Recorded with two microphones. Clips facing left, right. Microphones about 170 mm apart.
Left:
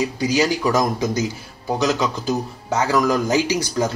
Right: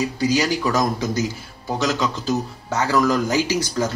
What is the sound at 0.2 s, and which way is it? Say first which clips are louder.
Speech: left 1 dB; 20° left (ahead or behind).